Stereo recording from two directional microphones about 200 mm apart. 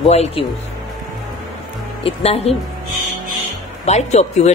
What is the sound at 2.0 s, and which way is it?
Speech, 30° left (ahead or behind).